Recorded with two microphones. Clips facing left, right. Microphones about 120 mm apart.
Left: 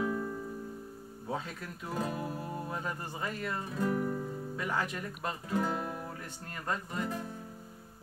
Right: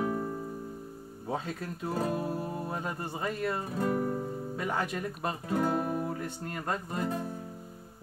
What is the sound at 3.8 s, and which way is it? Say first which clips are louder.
Guitar: right 1 dB; 40° right (ahead or behind).